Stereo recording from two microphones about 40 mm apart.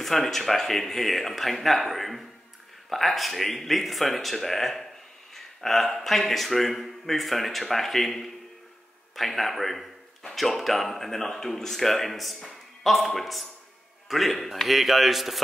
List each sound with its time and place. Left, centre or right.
0.0 s a man's voice: centre